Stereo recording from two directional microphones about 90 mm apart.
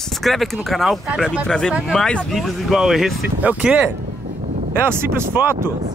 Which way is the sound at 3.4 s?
15° right (ahead or behind).